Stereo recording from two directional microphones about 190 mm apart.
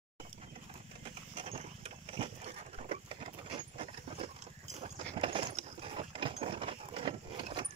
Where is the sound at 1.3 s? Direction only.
30° right (ahead or behind).